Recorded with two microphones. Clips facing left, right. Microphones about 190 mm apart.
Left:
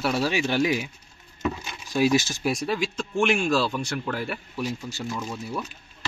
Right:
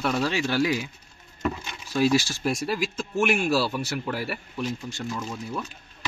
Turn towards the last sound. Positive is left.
turn(degrees=5)  # may be behind; listen again after turning